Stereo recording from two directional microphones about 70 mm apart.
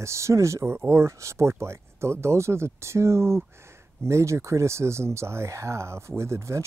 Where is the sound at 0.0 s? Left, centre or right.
Right.